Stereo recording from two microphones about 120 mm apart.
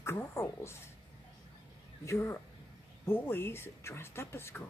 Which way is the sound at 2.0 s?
25° left (ahead or behind).